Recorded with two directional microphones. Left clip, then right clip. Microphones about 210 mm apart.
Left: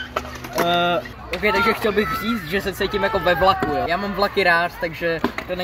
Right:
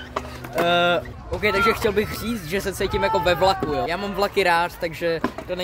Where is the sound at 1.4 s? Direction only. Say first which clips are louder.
Left 1 dB; 25° right (ahead or behind).